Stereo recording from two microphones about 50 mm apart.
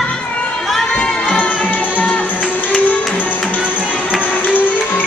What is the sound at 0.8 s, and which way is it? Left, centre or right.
Music, centre.